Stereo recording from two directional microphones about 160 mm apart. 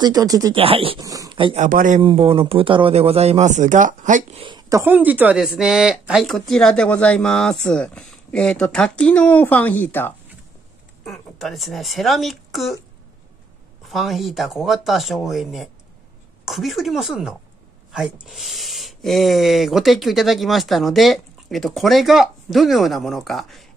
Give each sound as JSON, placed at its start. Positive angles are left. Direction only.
{"t": 0.0, "sound": "speech", "side_deg": -25}
{"t": 0.6, "sound": "speech", "side_deg": -35}
{"t": 1.0, "sound": "speech", "side_deg": -20}
{"t": 1.6, "sound": "a man's voice", "side_deg": -55}
{"t": 2.0, "sound": "speech", "side_deg": -35}
{"t": 4.4, "sound": "speech", "side_deg": -30}
{"t": 11.1, "sound": "speech", "side_deg": 0}
{"t": 13.8, "sound": "speech", "side_deg": 0}